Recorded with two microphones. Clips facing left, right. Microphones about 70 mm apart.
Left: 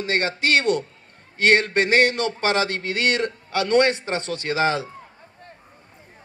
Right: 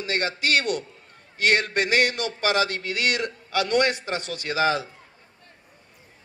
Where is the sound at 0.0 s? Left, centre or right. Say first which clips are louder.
Left 3 dB; left.